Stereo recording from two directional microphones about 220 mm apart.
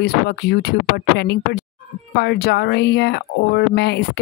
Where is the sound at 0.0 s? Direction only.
45° left (ahead or behind).